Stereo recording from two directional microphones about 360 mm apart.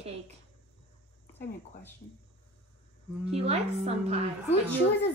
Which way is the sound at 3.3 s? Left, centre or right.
Centre.